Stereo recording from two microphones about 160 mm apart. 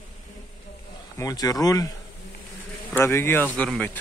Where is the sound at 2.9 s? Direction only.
15° left (ahead or behind).